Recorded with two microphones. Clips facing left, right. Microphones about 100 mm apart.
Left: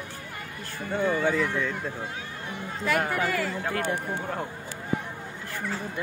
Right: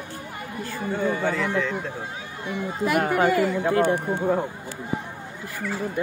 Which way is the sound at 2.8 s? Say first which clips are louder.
Right 5 dB; 15° right (ahead or behind).